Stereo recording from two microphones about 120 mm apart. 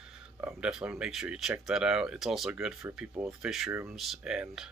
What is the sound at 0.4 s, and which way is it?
Speech, 10° right (ahead or behind).